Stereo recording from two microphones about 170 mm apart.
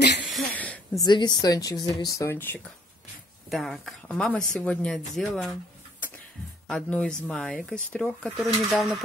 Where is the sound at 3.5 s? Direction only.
Centre (ahead or behind).